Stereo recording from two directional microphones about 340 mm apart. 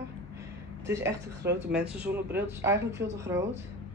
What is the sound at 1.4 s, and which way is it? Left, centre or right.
Speech, right.